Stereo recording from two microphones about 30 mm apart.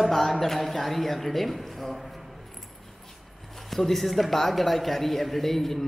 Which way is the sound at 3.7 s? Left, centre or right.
Centre.